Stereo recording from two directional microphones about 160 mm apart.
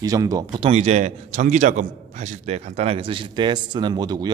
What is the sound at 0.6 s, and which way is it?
A man's voice, 40° right (ahead or behind).